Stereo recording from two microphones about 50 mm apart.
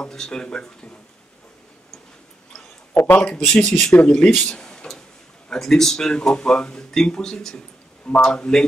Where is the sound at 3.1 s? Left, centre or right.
Centre.